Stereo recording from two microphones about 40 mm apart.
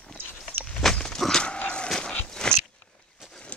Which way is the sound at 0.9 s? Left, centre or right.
Centre.